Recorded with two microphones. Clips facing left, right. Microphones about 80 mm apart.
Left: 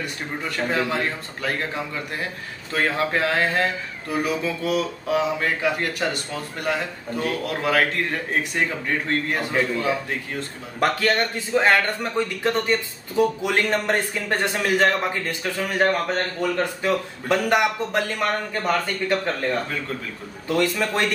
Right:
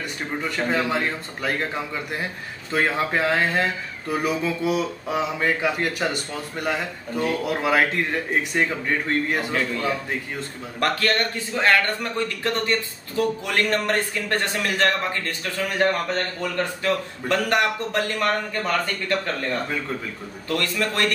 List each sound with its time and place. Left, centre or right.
0.4 s a man's voice: centre